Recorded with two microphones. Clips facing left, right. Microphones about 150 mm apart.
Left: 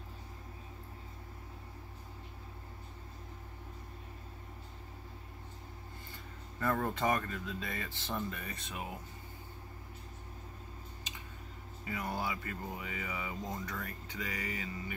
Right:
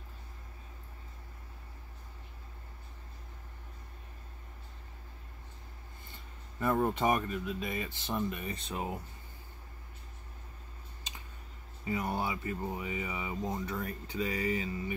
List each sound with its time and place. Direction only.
6.6 s speech: 20° right (ahead or behind)
11.8 s speech: 25° right (ahead or behind)